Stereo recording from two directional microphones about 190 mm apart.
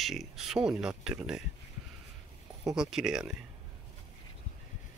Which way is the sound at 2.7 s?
Centre (ahead or behind).